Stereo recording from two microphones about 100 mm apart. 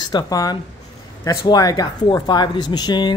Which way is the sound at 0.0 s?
40° left (ahead or behind).